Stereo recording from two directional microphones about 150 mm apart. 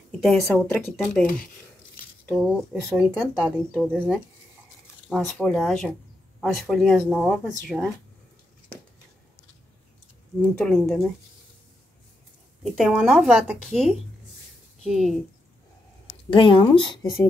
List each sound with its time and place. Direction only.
0.2 s speech: 5° left (ahead or behind)
2.3 s speech: 10° right (ahead or behind)
3.7 s speech: 5° left (ahead or behind)
10.6 s speech: 5° left (ahead or behind)
12.7 s speech: centre (ahead or behind)
16.3 s speech: 35° left (ahead or behind)